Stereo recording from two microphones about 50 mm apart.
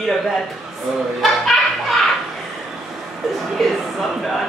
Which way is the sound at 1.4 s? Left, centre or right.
Centre.